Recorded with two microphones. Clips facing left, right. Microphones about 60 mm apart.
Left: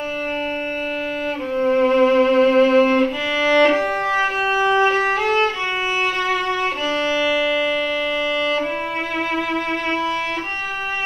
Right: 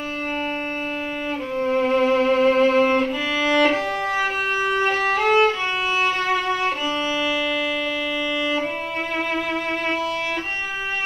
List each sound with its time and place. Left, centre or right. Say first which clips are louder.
1.7 s music: left 4 dB; centre
2.4 s violin: left 3 dB; centre
3.5 s music: left 4 dB; left
4.1 s violin: left 4 dB; centre
4.9 s violin: left 2 dB; centre
5.2 s violin: right 1 dB; centre
6.0 s violin: left 1 dB; centre
7.2 s civil defense siren: left 4 dB; centre